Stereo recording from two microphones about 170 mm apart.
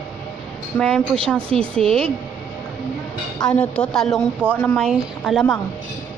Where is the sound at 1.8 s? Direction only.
35° right (ahead or behind).